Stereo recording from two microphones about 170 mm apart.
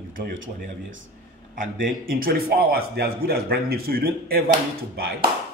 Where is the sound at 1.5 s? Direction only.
55° right (ahead or behind).